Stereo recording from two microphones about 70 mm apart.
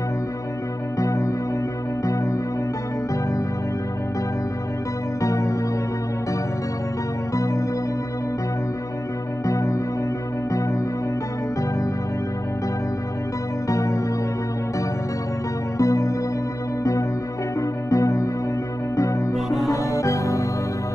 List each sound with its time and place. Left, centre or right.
0.9 s music: left
5.2 s music: left
7.3 s music: left
9.5 s music: left
13.7 s music: left
15.8 s music: left
17.6 s music: left
19.3 s music: centre
19.7 s music: left